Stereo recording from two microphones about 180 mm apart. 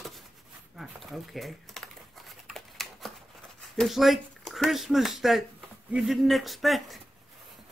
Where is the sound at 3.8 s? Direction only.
Centre (ahead or behind).